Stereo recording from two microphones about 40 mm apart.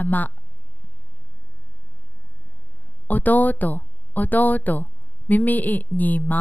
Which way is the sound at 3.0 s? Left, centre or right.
Left.